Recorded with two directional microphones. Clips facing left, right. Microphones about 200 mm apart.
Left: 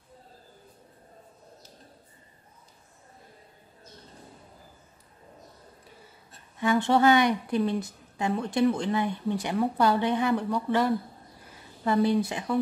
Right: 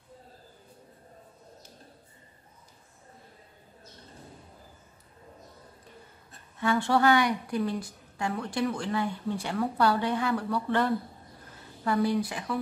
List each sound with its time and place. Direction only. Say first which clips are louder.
6.6 s a woman's voice: left 2 dB; 20° left (ahead or behind)